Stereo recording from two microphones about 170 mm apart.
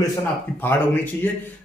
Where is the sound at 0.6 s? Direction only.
10° left (ahead or behind).